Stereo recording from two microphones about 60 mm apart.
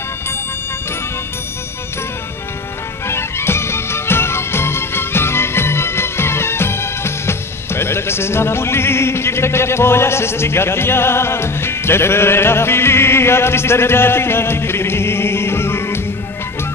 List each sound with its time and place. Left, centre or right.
3.1 s music: left